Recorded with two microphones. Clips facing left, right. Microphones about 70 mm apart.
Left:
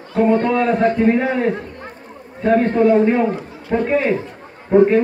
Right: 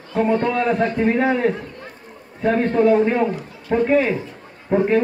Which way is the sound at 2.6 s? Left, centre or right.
Left.